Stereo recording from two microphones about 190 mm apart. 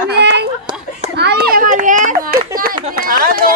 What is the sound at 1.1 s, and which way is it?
Children playing, 60° right (ahead or behind).